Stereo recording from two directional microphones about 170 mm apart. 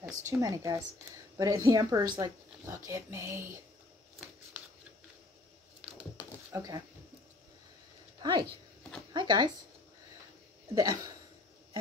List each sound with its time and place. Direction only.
0.2 s speech: 15° right (ahead or behind)
5.8 s a sound: 5° left (ahead or behind)
6.5 s speech: 20° right (ahead or behind)
8.2 s speech: 25° right (ahead or behind)
10.7 s speech: 20° right (ahead or behind)